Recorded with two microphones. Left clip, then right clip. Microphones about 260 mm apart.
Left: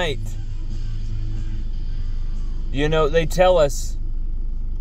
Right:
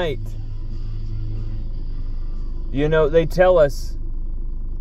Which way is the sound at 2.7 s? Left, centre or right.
Centre.